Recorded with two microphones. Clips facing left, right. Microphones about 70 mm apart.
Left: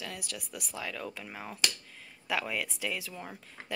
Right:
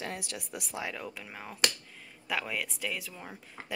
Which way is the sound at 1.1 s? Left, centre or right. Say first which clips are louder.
Left 1 dB; centre.